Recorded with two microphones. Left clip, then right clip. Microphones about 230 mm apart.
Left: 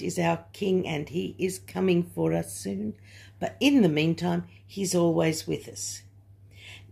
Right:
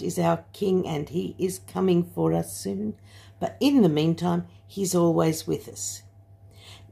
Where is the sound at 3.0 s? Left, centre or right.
Right.